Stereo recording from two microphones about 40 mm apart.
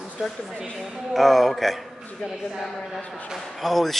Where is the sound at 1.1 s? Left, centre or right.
Centre.